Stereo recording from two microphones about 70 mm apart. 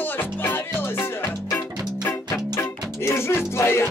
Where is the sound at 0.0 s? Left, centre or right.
Left.